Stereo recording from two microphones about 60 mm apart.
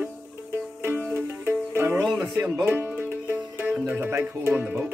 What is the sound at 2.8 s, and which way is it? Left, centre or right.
Music, right.